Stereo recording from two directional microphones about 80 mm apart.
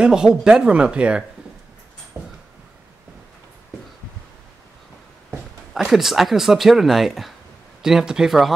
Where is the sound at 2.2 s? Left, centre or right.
Right.